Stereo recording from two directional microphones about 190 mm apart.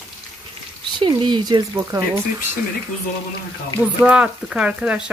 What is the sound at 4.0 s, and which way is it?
Speech, 5° right (ahead or behind).